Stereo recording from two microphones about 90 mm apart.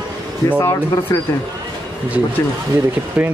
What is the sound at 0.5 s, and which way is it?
Speech, 30° left (ahead or behind).